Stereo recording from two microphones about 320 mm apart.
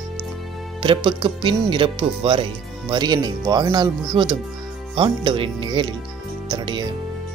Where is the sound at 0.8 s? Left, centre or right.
Centre.